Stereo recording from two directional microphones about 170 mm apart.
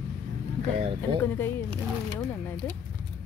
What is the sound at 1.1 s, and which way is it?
Speech, 35° right (ahead or behind).